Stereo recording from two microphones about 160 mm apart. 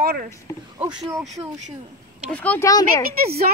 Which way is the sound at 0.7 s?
25° right (ahead or behind).